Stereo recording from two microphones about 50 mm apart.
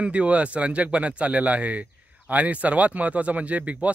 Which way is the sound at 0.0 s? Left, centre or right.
Right.